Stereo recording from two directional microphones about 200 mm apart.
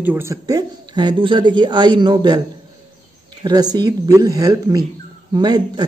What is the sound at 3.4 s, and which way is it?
Speech, 20° right (ahead or behind).